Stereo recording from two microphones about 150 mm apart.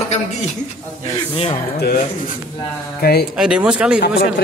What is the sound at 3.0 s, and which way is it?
Speech, 90° left.